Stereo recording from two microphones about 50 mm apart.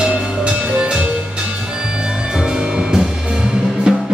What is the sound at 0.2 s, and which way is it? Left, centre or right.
Music, right.